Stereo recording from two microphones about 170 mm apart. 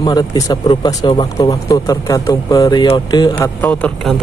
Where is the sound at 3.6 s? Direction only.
10° left (ahead or behind).